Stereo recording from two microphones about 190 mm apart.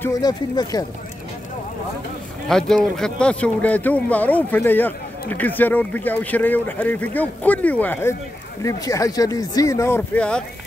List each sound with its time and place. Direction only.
0.0 s speech: 20° left (ahead or behind)
2.4 s speech: centre (ahead or behind)